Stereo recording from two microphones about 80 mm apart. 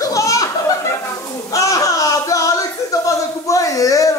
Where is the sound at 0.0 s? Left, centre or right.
Left.